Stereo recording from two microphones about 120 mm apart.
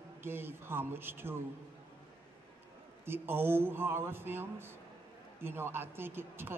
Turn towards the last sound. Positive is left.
turn(degrees=-20)  # may be behind; listen again after turning